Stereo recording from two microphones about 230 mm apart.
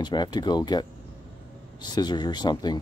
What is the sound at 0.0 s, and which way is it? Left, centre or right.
Speech, centre.